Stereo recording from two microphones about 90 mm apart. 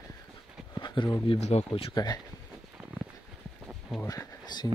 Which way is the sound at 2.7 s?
15° right (ahead or behind).